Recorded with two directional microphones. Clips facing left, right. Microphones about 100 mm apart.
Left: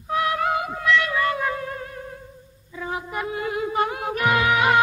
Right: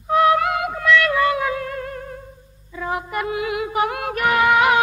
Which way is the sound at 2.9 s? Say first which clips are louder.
Right 4 dB; 65° right (ahead or behind).